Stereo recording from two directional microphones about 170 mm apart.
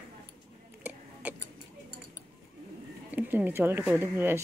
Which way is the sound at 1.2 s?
10° right (ahead or behind).